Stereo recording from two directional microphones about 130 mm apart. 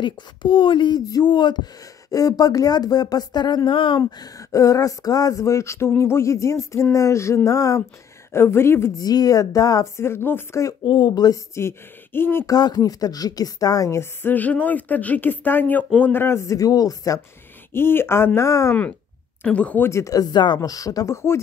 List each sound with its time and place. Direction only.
0.0 s speech: 40° left (ahead or behind)
4.0 s speech: 25° left (ahead or behind)
10.8 s speech: 40° left (ahead or behind); by 12.5 s 15° left (ahead or behind)
12.5 s a woman's voice: 30° left (ahead or behind)
19.4 s speech: 10° left (ahead or behind)